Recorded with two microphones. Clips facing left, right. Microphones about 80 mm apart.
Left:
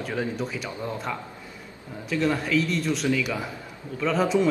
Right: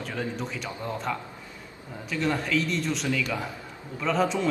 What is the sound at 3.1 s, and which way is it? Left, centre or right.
Speech, centre.